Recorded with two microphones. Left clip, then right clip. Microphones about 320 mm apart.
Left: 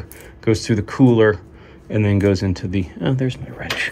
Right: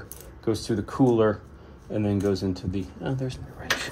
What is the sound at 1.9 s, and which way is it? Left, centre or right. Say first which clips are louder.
Speech: left 7 dB; left.